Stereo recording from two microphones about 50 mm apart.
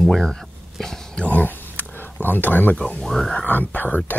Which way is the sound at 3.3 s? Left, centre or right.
Left.